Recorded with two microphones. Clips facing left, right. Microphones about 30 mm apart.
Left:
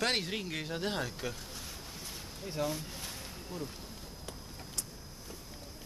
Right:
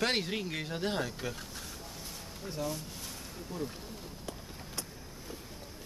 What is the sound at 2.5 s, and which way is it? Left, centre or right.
Speech, centre.